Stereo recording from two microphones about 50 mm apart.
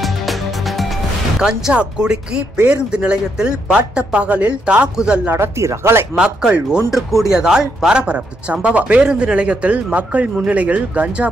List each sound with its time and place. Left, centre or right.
0.0 s music: centre
1.4 s speech: centre
5.3 s speech: right
6.1 s speech: centre
6.9 s speech: centre
7.3 s speech: centre
8.0 s speech: right